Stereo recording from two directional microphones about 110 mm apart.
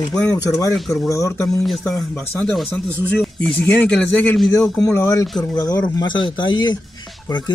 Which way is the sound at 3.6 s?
15° left (ahead or behind).